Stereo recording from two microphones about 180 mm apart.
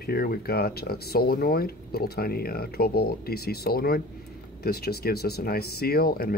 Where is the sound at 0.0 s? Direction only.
55° left (ahead or behind).